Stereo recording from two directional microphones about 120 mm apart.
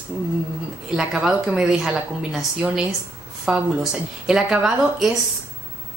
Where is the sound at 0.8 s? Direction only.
5° right (ahead or behind).